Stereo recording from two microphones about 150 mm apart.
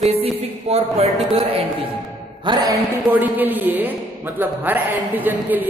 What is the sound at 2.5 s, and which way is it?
Speech, 30° right (ahead or behind).